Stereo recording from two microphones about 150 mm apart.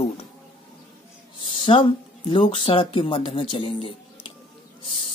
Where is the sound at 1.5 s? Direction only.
35° left (ahead or behind).